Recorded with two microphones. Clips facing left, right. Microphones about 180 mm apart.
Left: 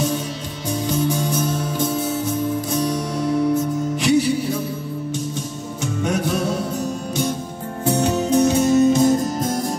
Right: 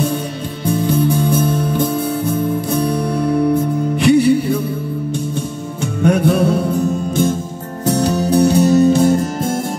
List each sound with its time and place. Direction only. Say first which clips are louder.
0.7 s music: right 5 dB; 55° right (ahead or behind)
6.0 s music: right 9 dB; 55° right (ahead or behind)
7.8 s music: right 3 dB; 35° right (ahead or behind)